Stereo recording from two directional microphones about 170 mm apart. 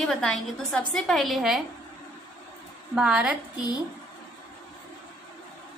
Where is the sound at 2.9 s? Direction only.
5° right (ahead or behind).